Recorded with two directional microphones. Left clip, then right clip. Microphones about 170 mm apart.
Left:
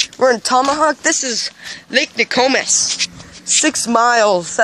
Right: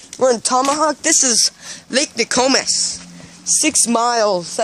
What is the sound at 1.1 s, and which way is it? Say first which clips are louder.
Speech: right 2 dB; 40° right (ahead or behind).